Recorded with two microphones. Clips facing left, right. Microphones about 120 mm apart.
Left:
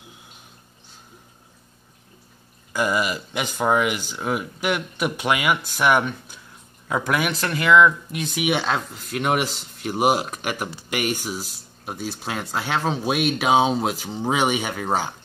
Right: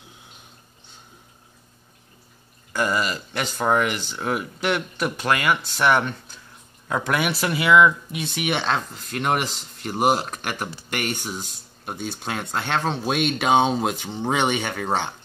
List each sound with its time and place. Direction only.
2.7 s speech: 10° left (ahead or behind)